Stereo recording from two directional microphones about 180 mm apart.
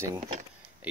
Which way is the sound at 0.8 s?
10° right (ahead or behind).